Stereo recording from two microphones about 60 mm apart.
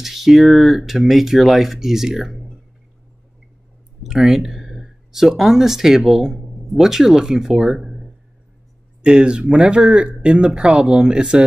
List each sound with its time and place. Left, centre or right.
0.0 s speech: centre
4.0 s speech: centre